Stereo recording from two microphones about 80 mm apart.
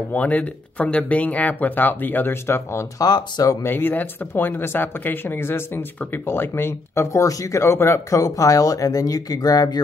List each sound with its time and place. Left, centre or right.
0.1 s speech: centre
3.0 s speech: left
3.6 s speech: left